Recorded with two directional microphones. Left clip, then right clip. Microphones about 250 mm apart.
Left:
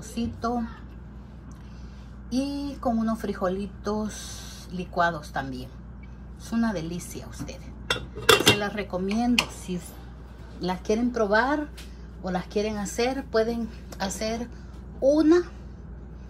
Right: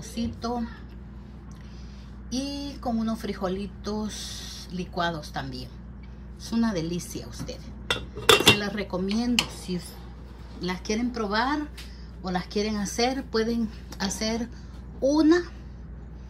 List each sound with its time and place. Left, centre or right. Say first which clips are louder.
0.0 s a woman's voice: left 2 dB; centre
2.2 s speech: left 3 dB; centre
8.2 s cutlery: right 1 dB; centre
8.5 s speech: left 1 dB; centre